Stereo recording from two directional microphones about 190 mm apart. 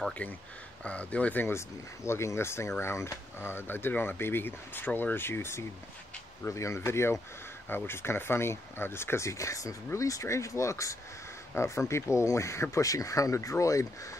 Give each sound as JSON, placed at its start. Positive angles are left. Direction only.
{"t": 0.2, "sound": "speech", "side_deg": 5}